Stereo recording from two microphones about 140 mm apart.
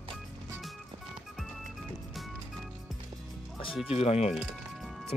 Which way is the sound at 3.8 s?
45° left (ahead or behind).